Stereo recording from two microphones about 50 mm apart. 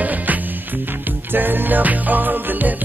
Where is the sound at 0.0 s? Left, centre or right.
Right.